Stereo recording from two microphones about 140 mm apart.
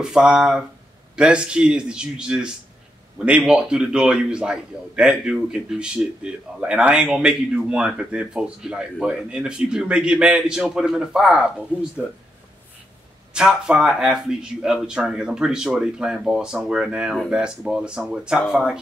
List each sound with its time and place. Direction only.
0.0 s a man's voice: 5° right (ahead or behind)
13.3 s speech: 5° right (ahead or behind)